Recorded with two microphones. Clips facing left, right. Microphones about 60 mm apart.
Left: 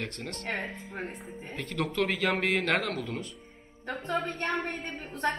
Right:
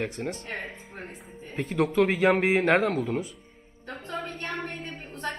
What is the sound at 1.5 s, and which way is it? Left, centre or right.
Speech, centre.